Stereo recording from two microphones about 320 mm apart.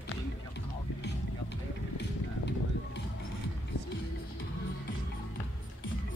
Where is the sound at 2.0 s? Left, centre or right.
Left.